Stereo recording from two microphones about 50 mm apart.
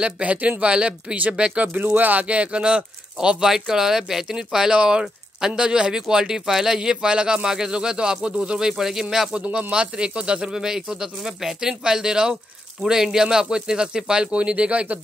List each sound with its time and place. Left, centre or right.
0.0 s speech: right; by 9.0 s centre
9.5 s speech: right